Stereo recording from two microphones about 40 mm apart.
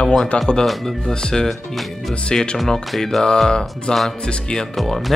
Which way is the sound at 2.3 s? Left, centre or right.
Left.